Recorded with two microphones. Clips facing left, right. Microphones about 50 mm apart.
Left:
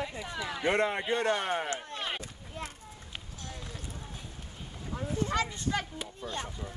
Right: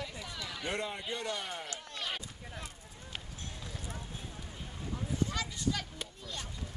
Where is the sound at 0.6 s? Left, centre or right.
Left.